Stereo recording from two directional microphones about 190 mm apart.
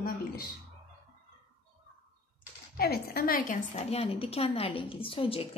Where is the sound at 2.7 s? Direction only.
55° left (ahead or behind).